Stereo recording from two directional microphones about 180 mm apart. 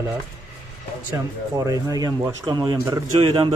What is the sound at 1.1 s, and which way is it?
Speech, 20° right (ahead or behind).